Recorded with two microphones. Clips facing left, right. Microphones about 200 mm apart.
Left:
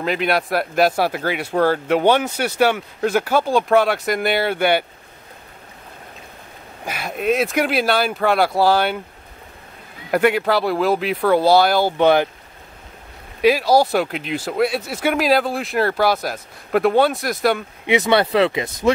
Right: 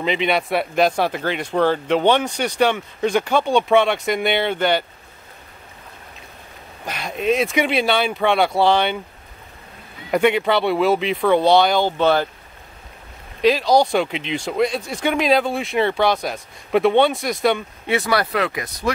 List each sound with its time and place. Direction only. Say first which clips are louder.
0.0 s speech: even; 5° left (ahead or behind)
6.9 s speech: even; 5° left (ahead or behind)
10.1 s speech: even; 5° left (ahead or behind)
13.4 s speech: left 1 dB; 10° left (ahead or behind)
17.8 s speech: left 4 dB; 20° left (ahead or behind)